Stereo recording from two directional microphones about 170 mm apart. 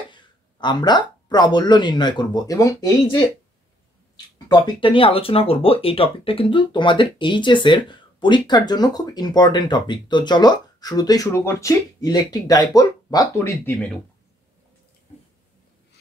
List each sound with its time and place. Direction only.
0.1 s speech: 25° left (ahead or behind)
4.5 s speech: 30° left (ahead or behind)